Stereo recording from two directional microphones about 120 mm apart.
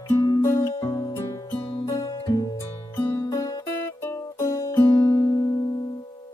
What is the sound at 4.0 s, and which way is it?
Music, 20° left (ahead or behind).